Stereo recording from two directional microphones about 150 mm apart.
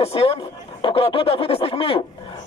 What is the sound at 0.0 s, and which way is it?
Speech, 40° left (ahead or behind).